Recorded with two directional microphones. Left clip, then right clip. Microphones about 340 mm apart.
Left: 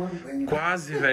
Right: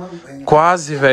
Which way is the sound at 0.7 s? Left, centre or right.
Centre.